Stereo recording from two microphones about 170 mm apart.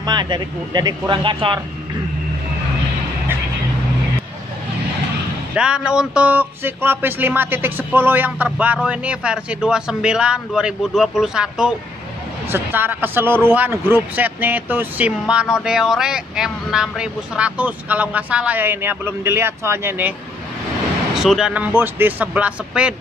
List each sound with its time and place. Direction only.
0.0 s speech: 25° right (ahead or behind)
5.5 s speech: 5° right (ahead or behind)
21.2 s speech: 5° right (ahead or behind)